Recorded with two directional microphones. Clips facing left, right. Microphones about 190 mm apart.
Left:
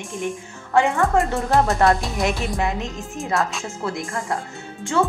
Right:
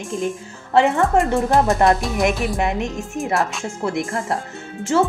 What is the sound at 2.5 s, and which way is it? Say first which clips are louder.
Speech: right 3 dB; 20° right (ahead or behind).